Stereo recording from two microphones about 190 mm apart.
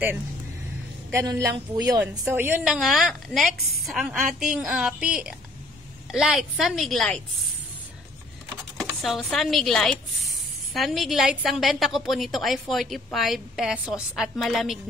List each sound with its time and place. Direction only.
1.1 s a woman's voice: 15° right (ahead or behind); by 7.2 s centre (ahead or behind)
8.7 s chopping: centre (ahead or behind)
10.7 s a woman's voice: centre (ahead or behind)